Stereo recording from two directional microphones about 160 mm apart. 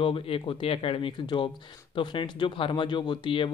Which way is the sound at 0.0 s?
35° left (ahead or behind).